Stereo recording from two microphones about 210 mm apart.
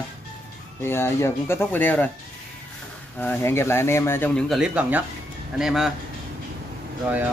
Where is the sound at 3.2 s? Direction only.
10° left (ahead or behind).